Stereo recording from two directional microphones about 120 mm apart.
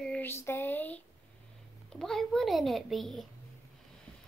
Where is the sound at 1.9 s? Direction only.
5° left (ahead or behind).